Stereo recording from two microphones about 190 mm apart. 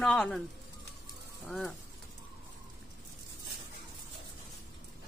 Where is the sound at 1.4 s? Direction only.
Centre (ahead or behind).